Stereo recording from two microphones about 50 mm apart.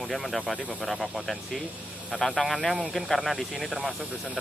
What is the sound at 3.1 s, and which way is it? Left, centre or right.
Speech, centre.